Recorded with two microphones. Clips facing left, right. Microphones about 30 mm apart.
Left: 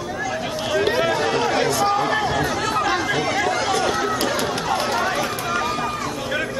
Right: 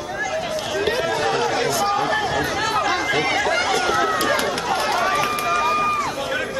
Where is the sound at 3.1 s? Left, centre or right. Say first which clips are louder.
Right 1 dB; centre.